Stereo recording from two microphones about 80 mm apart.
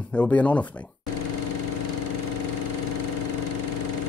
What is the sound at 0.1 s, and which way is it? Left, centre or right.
Speech, centre.